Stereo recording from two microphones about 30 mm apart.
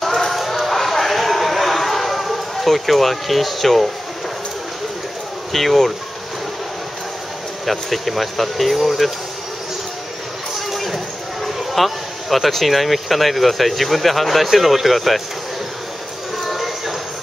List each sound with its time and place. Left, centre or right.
0.0 s a sound: centre
5.5 s speech: centre
7.6 s speech: centre
11.4 s speech: centre
16.3 s clip-clop: centre